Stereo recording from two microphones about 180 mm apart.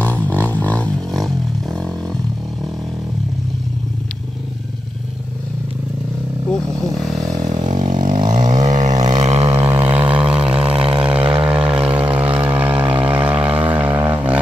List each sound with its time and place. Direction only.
0.0 s a sound: 10° left (ahead or behind)
7.7 s vehicle: 25° right (ahead or behind)
8.6 s vehicle: 40° right (ahead or behind)
9.9 s vehicle: 10° right (ahead or behind)
10.8 s vehicle: 30° right (ahead or behind)
11.4 s a sound: 5° right (ahead or behind)